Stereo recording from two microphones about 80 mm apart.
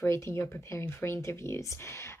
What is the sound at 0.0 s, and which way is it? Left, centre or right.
Speech, left.